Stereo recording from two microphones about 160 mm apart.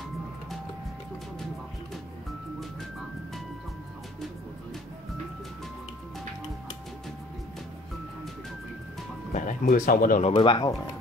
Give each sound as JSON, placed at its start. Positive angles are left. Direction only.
{"t": 9.3, "sound": "speech", "side_deg": 50}
{"t": 10.2, "sound": "speech", "side_deg": 30}